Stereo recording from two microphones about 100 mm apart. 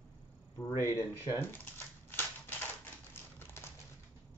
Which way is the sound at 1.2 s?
25° left (ahead or behind).